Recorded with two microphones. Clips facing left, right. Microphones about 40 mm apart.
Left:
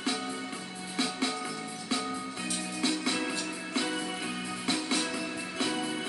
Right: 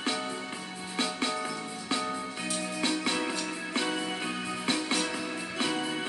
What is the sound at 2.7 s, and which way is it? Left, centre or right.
Music, right.